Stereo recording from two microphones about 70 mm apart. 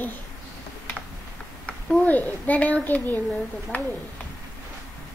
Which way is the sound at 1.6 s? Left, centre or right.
Left.